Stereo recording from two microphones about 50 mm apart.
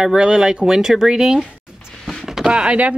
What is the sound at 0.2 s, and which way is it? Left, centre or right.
Speech, centre.